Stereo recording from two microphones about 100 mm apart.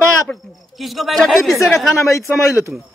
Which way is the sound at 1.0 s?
Centre (ahead or behind).